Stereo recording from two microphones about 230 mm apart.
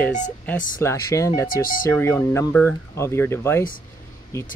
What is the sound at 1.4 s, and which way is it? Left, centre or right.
Speech, left.